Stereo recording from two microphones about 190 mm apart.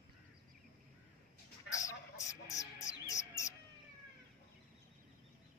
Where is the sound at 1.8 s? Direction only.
15° left (ahead or behind).